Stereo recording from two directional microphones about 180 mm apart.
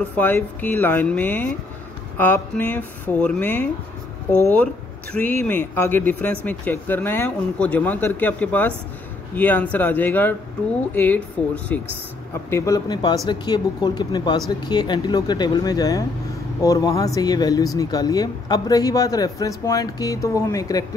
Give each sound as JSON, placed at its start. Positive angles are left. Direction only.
{"t": 0.1, "sound": "speech", "side_deg": 10}